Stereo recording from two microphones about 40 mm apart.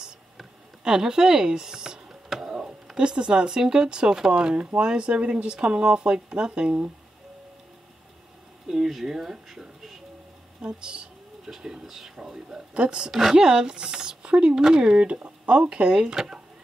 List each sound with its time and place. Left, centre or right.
0.8 s speech: centre
2.2 s a sound: centre
2.5 s speech: centre
8.6 s speech: centre
10.6 s speech: right
12.8 s speech: right
13.1 s speech: centre
13.4 s speech: centre
15.9 s speech: centre